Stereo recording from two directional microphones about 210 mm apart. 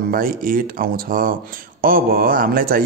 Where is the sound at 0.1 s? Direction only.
45° right (ahead or behind).